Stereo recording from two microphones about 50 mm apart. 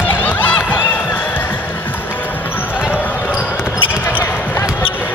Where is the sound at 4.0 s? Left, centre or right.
Left.